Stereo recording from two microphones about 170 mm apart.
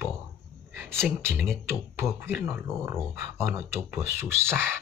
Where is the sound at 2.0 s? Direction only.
15° right (ahead or behind).